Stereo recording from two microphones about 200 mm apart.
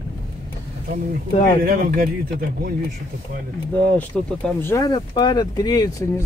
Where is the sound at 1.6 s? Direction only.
45° right (ahead or behind).